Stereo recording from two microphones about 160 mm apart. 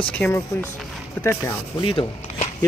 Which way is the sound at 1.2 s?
15° left (ahead or behind).